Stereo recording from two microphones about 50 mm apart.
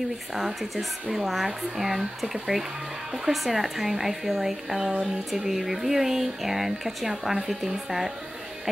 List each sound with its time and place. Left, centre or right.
0.3 s speech: centre